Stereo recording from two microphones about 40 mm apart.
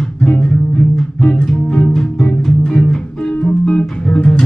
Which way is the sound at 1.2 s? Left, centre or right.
Centre.